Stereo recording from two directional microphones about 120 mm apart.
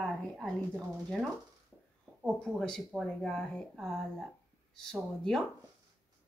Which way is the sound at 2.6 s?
5° left (ahead or behind).